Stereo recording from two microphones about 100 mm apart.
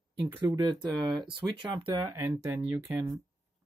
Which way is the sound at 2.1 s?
25° right (ahead or behind).